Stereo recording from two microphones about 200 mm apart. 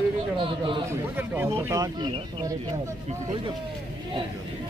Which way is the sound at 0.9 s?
10° right (ahead or behind).